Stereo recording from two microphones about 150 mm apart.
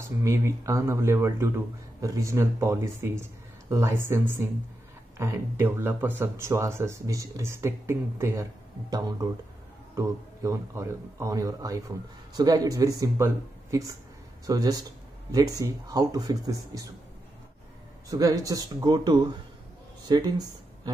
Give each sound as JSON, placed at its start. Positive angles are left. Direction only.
{"t": 0.2, "sound": "a man's voice", "side_deg": -20}
{"t": 18.1, "sound": "a man's voice", "side_deg": -25}